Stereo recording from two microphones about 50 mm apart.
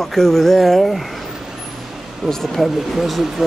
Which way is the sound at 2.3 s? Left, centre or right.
Centre.